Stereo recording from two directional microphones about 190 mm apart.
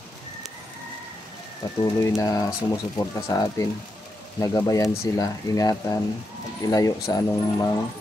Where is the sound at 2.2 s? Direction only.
20° left (ahead or behind).